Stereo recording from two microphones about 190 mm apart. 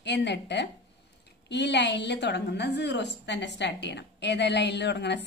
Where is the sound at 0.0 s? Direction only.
65° left (ahead or behind).